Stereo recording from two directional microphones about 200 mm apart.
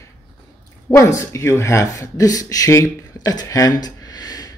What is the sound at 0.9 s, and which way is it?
Speech, 15° left (ahead or behind).